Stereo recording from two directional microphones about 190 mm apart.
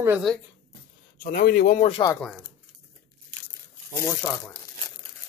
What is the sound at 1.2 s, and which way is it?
Speech, 50° left (ahead or behind).